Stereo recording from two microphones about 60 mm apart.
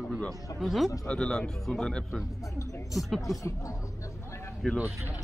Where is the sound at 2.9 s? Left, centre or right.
Centre.